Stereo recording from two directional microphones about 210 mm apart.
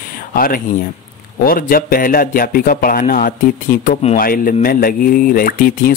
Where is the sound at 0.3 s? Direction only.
40° left (ahead or behind).